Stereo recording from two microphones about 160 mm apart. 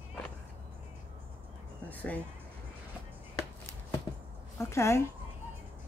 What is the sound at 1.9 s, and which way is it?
Speech, 10° left (ahead or behind).